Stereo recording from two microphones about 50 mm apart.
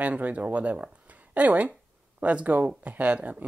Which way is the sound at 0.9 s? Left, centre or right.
Right.